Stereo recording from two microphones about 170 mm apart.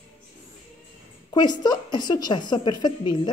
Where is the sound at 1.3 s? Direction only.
25° left (ahead or behind).